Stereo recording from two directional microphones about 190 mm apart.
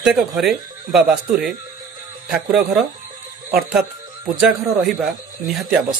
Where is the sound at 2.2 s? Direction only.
Centre (ahead or behind).